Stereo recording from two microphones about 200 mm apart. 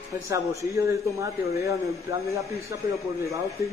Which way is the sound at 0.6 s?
15° right (ahead or behind).